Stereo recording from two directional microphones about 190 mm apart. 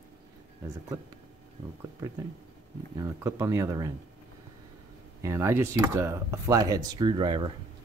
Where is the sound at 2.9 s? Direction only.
15° right (ahead or behind).